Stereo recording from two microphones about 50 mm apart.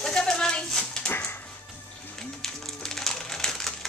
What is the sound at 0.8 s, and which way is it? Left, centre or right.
Dog, centre.